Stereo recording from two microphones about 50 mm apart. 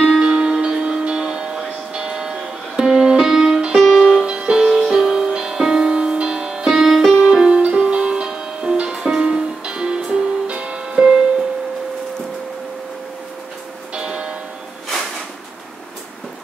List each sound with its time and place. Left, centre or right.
0.2 s music: centre
3.8 s music: centre
4.2 s music: centre
13.9 s music: centre